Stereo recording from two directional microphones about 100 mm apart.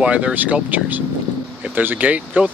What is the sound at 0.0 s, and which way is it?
Speech, 10° right (ahead or behind).